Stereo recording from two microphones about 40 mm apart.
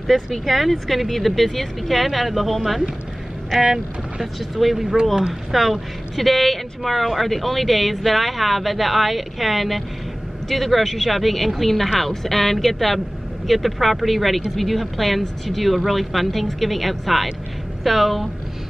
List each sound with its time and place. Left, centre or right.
0.0 s speech: centre